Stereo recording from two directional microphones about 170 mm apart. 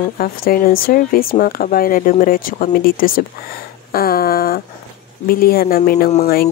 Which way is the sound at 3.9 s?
60° left (ahead or behind).